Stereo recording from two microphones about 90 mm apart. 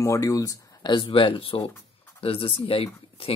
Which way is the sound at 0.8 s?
70° left (ahead or behind).